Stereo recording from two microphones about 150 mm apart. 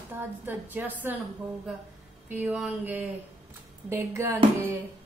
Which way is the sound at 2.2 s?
10° right (ahead or behind).